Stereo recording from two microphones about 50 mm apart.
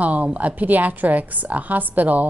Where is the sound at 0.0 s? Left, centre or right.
Right.